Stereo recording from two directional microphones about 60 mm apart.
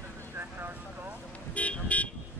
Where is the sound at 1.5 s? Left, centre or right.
Left.